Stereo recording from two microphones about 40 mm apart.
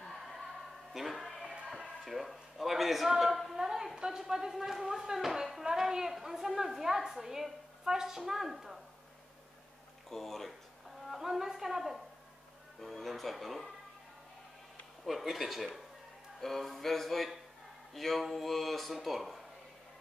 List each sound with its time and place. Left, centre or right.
0.9 s music: centre
2.0 s a man's voice: centre
3.5 s a sound: centre
3.9 s a woman's voice: centre
4.5 s a woman's voice: centre
10.0 s speech: centre
11.1 s a woman's voice: centre
15.0 s a man's voice: centre